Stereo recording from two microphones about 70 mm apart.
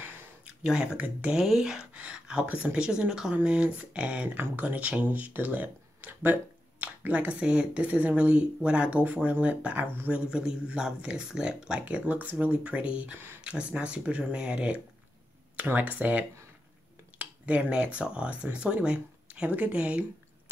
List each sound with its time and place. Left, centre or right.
0.7 s speech: centre
1.4 s speech: centre
11.8 s speech: right